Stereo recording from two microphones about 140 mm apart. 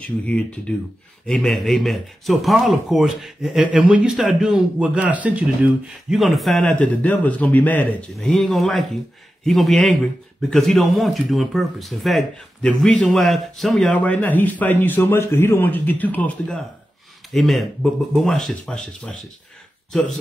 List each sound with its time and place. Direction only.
0.0 s speech: 10° left (ahead or behind)